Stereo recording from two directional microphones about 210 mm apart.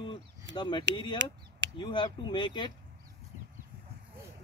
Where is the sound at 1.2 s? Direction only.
60° right (ahead or behind).